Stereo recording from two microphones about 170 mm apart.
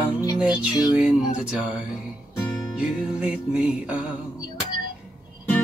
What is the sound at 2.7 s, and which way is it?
Music, 5° right (ahead or behind).